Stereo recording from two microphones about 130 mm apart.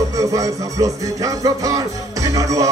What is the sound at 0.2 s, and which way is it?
Music, 25° right (ahead or behind).